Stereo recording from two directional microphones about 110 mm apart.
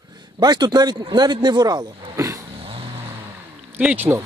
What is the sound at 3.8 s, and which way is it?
Speech, 15° right (ahead or behind).